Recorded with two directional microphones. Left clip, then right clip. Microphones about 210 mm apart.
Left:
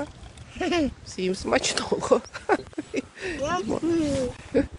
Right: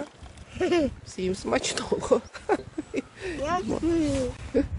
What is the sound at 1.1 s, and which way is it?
Speech, 5° right (ahead or behind).